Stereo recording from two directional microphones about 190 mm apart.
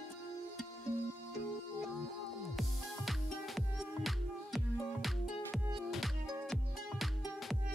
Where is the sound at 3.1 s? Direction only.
Centre (ahead or behind).